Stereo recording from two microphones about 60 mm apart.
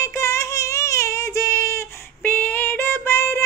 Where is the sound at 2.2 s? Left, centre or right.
Left.